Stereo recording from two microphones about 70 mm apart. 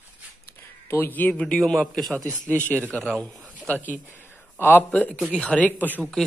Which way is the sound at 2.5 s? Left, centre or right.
Centre.